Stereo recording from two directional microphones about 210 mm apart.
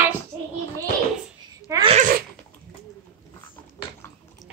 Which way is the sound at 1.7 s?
20° right (ahead or behind).